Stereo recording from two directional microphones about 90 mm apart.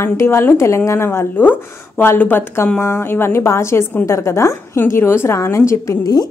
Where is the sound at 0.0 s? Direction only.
30° left (ahead or behind).